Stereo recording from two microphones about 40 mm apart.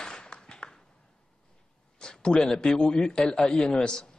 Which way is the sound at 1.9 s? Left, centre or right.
Centre.